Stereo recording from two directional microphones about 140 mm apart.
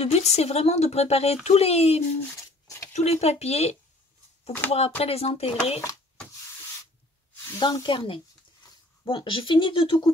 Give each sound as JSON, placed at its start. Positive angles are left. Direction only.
{"t": 0.0, "sound": "speech", "side_deg": 50}
{"t": 2.3, "sound": "a sound", "side_deg": 20}
{"t": 2.9, "sound": "speech", "side_deg": 50}
{"t": 7.5, "sound": "speech", "side_deg": 30}